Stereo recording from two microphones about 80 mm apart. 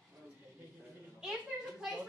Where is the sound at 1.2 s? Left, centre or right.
Centre.